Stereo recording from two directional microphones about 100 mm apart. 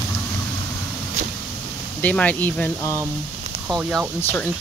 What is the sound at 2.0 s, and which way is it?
Speech, 15° left (ahead or behind).